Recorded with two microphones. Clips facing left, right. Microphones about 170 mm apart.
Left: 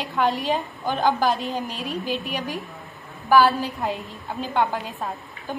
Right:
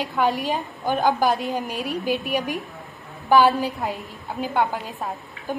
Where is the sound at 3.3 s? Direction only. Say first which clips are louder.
Right 1 dB; 20° right (ahead or behind).